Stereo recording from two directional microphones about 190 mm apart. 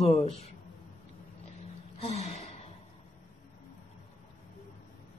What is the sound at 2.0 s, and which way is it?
Gasp, 35° left (ahead or behind).